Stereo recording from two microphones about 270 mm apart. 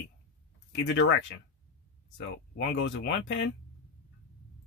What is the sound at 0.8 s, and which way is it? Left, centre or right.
Speech, left.